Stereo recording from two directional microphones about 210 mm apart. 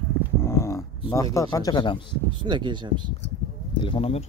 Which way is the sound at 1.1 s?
15° left (ahead or behind).